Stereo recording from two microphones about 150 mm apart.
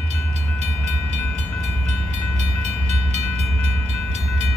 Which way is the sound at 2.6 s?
50° right (ahead or behind).